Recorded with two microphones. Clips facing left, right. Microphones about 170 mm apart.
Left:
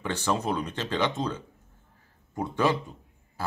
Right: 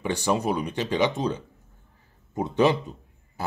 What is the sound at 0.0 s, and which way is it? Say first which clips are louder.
Speech: right 3 dB; 15° right (ahead or behind).